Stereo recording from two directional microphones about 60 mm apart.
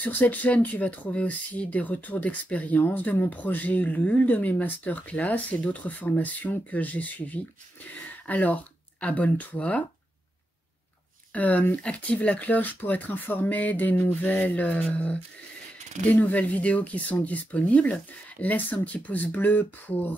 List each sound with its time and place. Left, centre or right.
0.0 s speech: left
11.3 s speech: left